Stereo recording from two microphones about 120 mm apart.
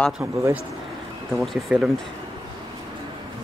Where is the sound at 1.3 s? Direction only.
Centre (ahead or behind).